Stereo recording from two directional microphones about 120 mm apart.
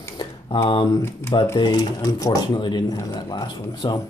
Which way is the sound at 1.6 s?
35° left (ahead or behind).